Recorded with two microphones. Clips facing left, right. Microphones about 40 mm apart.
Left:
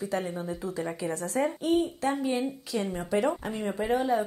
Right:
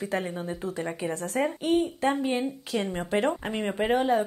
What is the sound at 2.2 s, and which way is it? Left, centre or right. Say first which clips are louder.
A woman's voice: right 1 dB; right.